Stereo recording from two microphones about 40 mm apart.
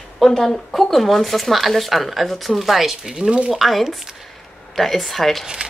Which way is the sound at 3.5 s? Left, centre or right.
Centre.